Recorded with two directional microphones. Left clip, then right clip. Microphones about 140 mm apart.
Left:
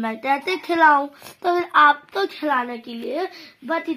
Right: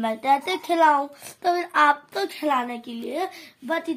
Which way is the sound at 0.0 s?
15° left (ahead or behind).